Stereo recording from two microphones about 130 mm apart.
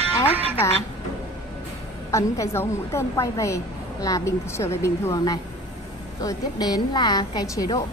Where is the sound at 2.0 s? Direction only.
25° left (ahead or behind).